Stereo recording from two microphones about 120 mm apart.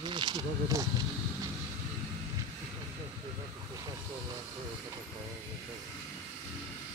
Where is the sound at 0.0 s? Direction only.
40° right (ahead or behind).